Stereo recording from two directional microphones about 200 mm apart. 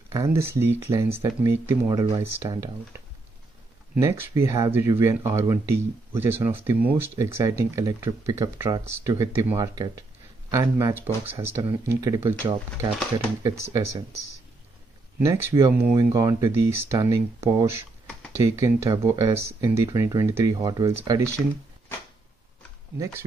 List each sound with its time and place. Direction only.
0.1 s speech: 15° right (ahead or behind)
3.9 s speech: 15° right (ahead or behind)
15.1 s speech: 10° right (ahead or behind)